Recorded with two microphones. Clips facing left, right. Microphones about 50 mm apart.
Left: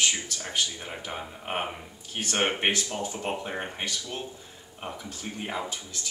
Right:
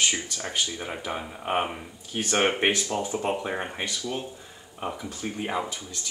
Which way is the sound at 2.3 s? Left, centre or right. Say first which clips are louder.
Right 3 dB; centre.